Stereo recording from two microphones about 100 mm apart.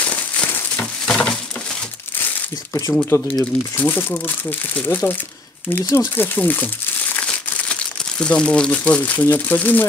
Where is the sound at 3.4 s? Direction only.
20° left (ahead or behind).